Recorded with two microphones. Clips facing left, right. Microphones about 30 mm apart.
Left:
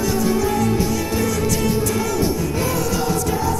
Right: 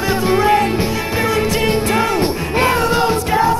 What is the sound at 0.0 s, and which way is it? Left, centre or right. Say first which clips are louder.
Music: right 4 dB; right.